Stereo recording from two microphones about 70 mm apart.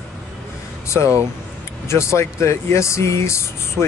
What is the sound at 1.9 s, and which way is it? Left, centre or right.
Speech, left.